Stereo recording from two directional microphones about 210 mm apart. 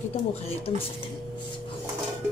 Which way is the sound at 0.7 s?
25° left (ahead or behind).